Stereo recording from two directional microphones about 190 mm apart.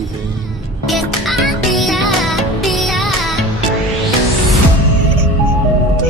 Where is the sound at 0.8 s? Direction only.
Centre (ahead or behind).